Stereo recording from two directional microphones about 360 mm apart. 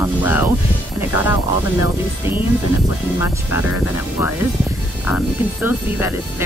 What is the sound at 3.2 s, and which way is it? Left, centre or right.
Speech, left.